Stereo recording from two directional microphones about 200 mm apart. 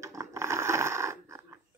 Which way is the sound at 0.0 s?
15° right (ahead or behind).